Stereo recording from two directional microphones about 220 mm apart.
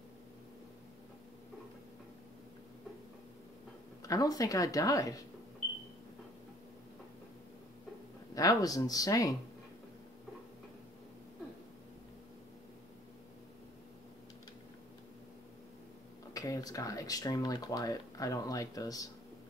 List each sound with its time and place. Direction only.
4.0 s speech: 15° left (ahead or behind)
8.4 s speech: 15° left (ahead or behind)
16.3 s speech: 15° left (ahead or behind)